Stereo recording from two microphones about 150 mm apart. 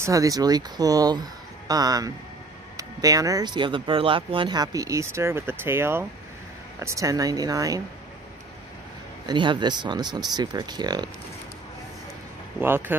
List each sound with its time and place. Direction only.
0.0 s speech: 25° right (ahead or behind)
9.2 s speech: 30° right (ahead or behind)
12.5 s speech: 15° right (ahead or behind)